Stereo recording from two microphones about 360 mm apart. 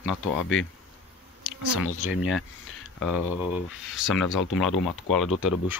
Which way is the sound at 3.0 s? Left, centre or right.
Centre.